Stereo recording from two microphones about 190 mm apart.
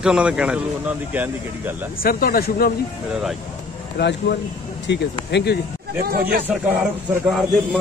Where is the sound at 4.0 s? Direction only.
65° left (ahead or behind).